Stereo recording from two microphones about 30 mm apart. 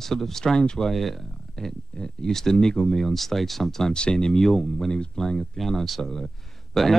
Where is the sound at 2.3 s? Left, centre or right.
Centre.